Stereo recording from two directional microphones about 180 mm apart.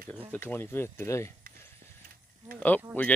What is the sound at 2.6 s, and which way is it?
Speech, 10° left (ahead or behind).